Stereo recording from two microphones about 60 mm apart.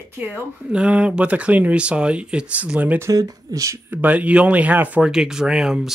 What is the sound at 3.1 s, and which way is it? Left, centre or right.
Speech, right.